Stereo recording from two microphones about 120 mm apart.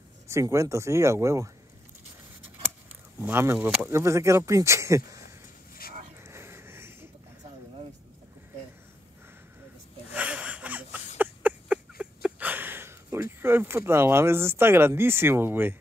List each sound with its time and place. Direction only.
0.3 s speech: 25° right (ahead or behind)
3.2 s speech: 20° right (ahead or behind)
3.5 s speech: 5° right (ahead or behind)
3.8 s speech: 25° right (ahead or behind)
6.2 s a sound: 20° right (ahead or behind)
10.1 s a sound: 10° right (ahead or behind)